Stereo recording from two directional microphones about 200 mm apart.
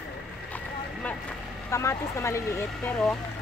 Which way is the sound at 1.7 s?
15° left (ahead or behind).